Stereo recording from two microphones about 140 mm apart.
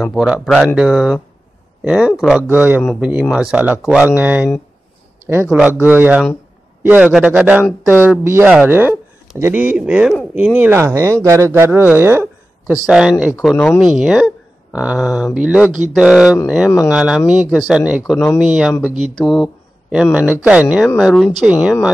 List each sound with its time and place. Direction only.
0.0 s speech: centre (ahead or behind)
12.8 s speech: 5° right (ahead or behind)